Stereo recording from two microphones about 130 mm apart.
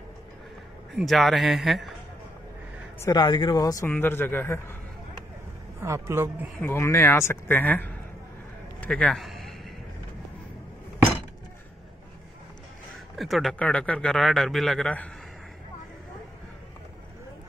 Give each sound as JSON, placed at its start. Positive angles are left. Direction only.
{"t": 0.9, "sound": "speech", "side_deg": 0}
{"t": 3.1, "sound": "speech", "side_deg": 35}
{"t": 3.8, "sound": "speech", "side_deg": 15}
{"t": 5.8, "sound": "a man's voice", "side_deg": -20}
{"t": 6.6, "sound": "speech", "side_deg": 20}
{"t": 8.8, "sound": "a sound", "side_deg": 5}
{"t": 13.2, "sound": "speech", "side_deg": 0}